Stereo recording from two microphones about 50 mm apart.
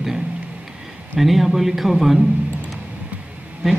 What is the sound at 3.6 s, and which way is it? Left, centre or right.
Speech, centre.